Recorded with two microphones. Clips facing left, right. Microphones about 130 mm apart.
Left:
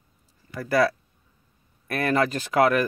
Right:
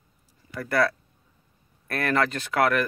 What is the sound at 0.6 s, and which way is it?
Speech, 5° left (ahead or behind).